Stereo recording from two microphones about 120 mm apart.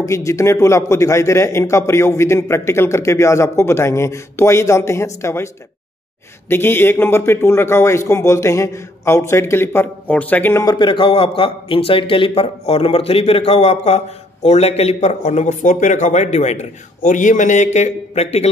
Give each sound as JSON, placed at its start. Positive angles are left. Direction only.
{"t": 0.0, "sound": "a man's voice", "side_deg": 25}
{"t": 6.5, "sound": "a man's voice", "side_deg": 20}
{"t": 10.6, "sound": "speech", "side_deg": 35}